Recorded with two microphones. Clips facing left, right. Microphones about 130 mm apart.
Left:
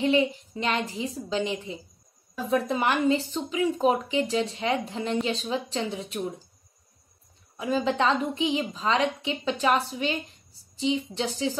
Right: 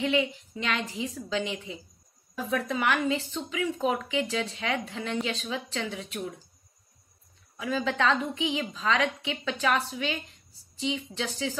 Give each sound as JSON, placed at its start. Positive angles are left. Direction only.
{"t": 0.0, "sound": "a woman's voice", "side_deg": 35}
{"t": 7.7, "sound": "speech", "side_deg": 25}